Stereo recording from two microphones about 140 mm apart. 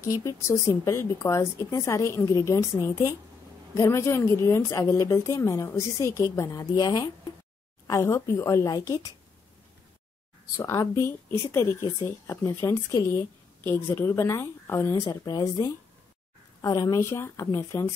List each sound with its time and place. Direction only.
0.1 s a woman's voice: 25° left (ahead or behind)
10.6 s a woman's voice: 20° left (ahead or behind)